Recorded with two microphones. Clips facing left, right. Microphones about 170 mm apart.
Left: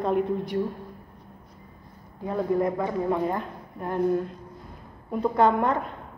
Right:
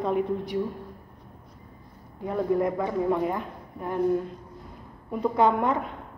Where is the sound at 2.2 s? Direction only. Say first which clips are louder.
Even; 25° left (ahead or behind).